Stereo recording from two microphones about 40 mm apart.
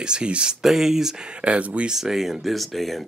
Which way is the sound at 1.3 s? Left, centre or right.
Right.